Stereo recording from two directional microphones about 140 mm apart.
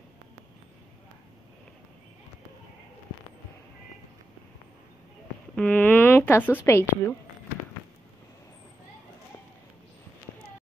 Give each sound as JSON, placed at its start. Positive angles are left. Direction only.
{"t": 5.6, "sound": "a woman's voice", "side_deg": 10}